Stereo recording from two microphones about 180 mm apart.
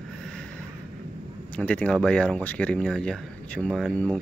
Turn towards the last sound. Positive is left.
turn(degrees=5)  # may be behind; listen again after turning